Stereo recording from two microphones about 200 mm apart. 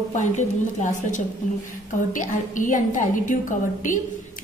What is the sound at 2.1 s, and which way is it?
A woman's voice, 40° left (ahead or behind).